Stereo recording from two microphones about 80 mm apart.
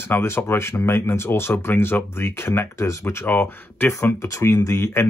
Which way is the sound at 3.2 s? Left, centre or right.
Left.